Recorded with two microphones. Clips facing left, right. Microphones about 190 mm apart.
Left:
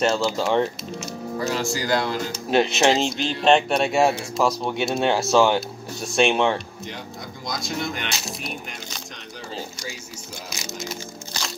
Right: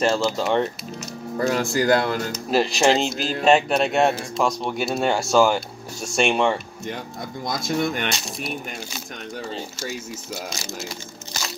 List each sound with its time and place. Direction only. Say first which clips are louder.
0.0 s speech: even; centre (ahead or behind)
1.4 s speech: right 5 dB; 55° right (ahead or behind)
2.5 s speech: even; centre (ahead or behind)
7.6 s speech: right 6 dB; 55° right (ahead or behind)
8.3 s speech: right 3 dB; centre (ahead or behind)